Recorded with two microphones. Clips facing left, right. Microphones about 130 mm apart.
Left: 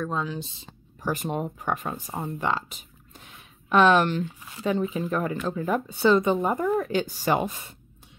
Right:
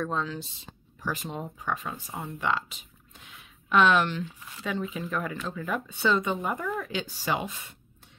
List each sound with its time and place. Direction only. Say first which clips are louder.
0.0 s speech: left 1 dB; 10° left (ahead or behind)
1.0 s speech: left 6 dB; 50° left (ahead or behind)